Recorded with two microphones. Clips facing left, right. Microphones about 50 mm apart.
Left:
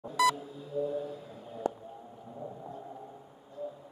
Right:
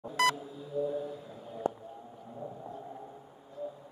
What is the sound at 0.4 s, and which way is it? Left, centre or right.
Music, centre.